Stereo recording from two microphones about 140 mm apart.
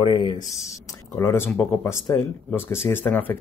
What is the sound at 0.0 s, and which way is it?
Speech, 35° left (ahead or behind).